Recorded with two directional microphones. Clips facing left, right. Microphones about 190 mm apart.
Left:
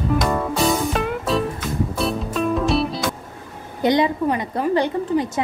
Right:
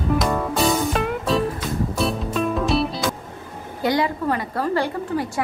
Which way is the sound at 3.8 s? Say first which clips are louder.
Left 3 dB; 20° left (ahead or behind).